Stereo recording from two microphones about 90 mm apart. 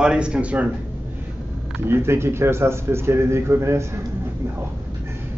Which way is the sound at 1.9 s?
30° right (ahead or behind).